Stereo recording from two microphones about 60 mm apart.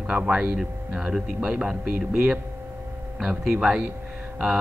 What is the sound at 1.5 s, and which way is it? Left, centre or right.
Speech, centre.